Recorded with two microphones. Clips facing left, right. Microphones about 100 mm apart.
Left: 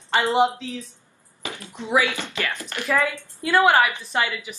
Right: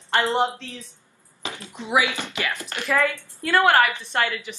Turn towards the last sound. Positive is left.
turn(degrees=10)  # may be behind; listen again after turning